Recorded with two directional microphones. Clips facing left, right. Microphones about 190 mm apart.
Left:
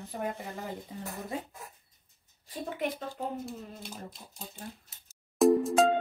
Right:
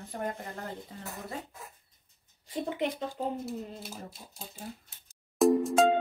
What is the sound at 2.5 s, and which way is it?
Speech, 20° right (ahead or behind).